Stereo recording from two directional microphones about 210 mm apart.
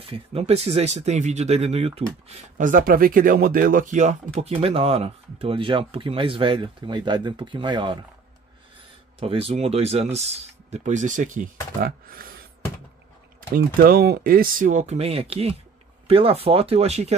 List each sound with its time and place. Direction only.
0.1 s speech: 30° right (ahead or behind)
9.2 s speech: 30° right (ahead or behind); by 12.4 s 45° right (ahead or behind)
13.7 s speech: 45° right (ahead or behind)